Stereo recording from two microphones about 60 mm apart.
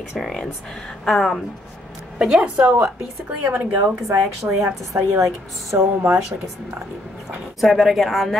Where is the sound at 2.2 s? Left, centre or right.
Centre.